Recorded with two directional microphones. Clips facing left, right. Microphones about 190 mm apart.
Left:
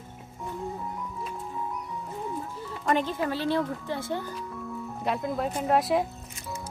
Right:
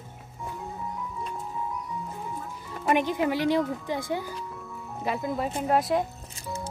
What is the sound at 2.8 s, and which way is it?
Speech, 15° right (ahead or behind).